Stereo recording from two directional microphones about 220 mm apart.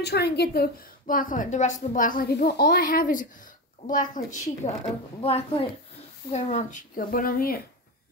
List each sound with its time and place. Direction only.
0.0 s a woman's voice: 50° left (ahead or behind)